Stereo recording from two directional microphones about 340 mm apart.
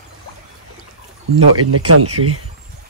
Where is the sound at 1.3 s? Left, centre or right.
Right.